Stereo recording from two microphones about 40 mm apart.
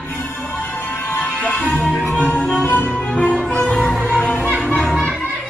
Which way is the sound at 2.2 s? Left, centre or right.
Left.